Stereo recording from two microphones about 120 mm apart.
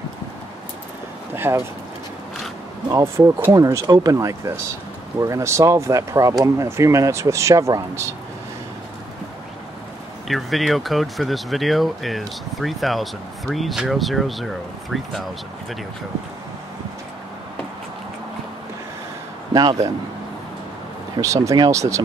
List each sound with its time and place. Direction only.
1.3 s a sound: 20° right (ahead or behind)
2.9 s speech: 20° right (ahead or behind)
10.2 s speech: centre (ahead or behind)
19.5 s a man's voice: 35° right (ahead or behind)
21.2 s speech: 25° right (ahead or behind)